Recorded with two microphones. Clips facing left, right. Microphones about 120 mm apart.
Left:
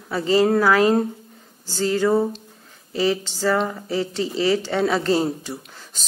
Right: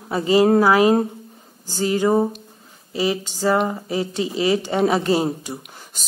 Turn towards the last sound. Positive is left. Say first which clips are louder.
# right 1 dB
turn(degrees=-15)  # may be behind; listen again after turning